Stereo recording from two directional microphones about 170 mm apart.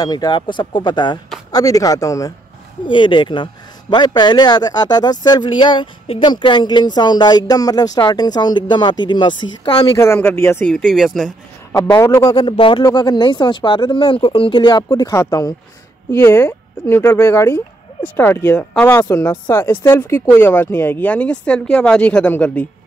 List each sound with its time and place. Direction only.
0.0 s speech: 25° left (ahead or behind)
10.9 s speech: centre (ahead or behind)
11.7 s speech: 20° left (ahead or behind)